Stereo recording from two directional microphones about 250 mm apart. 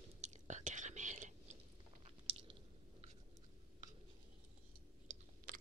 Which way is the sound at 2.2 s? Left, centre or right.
Right.